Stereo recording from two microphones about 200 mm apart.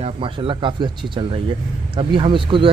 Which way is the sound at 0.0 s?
25° right (ahead or behind).